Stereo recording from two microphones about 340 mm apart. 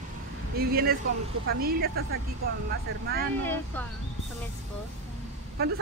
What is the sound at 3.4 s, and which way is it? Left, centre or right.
Speech, centre.